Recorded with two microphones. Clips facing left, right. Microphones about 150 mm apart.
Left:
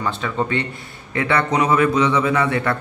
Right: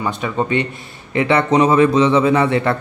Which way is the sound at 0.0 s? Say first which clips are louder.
Right 2 dB; 15° right (ahead or behind).